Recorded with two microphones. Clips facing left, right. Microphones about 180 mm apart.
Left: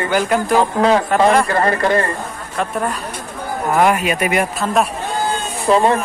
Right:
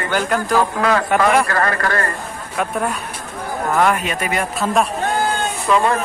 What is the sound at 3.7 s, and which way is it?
Speech, 10° left (ahead or behind).